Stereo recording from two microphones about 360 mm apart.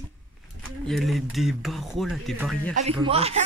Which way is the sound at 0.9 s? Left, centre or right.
Centre.